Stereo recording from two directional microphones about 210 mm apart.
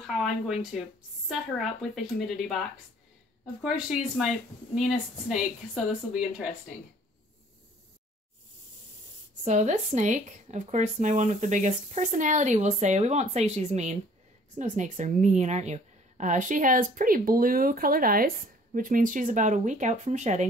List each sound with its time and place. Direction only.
0.0 s a woman's voice: centre (ahead or behind)
3.6 s a woman's voice: 5° right (ahead or behind)
9.4 s a woman's voice: 35° right (ahead or behind)